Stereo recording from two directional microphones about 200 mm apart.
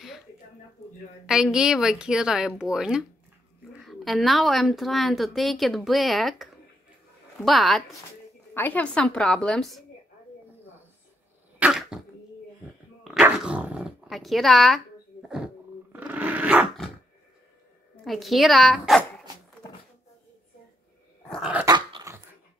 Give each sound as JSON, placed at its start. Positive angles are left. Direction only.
{"t": 1.2, "sound": "a woman's voice", "side_deg": -5}
{"t": 11.6, "sound": "cough", "side_deg": -5}
{"t": 13.1, "sound": "dog", "side_deg": -5}
{"t": 18.0, "sound": "a woman's voice", "side_deg": 0}
{"t": 21.3, "sound": "dog", "side_deg": -5}
{"t": 21.6, "sound": "dog", "side_deg": -20}